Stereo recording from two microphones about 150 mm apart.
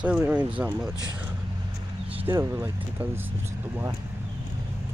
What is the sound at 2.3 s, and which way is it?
Speech, 20° right (ahead or behind).